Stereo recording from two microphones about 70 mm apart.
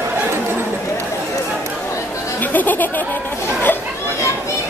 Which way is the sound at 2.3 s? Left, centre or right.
Left.